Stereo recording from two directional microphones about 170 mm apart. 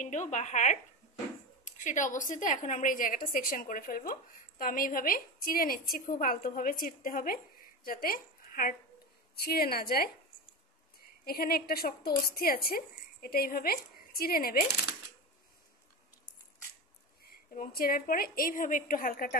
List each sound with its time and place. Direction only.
0.0 s a woman's voice: 45° left (ahead or behind); by 10.1 s 60° left (ahead or behind)
11.2 s a woman's voice: 60° left (ahead or behind)
17.2 s a woman's voice: 60° left (ahead or behind)